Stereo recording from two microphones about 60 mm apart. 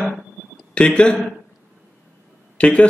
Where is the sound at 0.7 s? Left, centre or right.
Centre.